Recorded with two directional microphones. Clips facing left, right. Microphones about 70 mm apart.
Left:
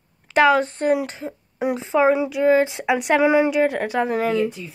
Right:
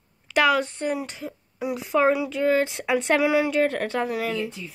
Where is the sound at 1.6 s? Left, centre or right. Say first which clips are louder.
Left 6 dB; left.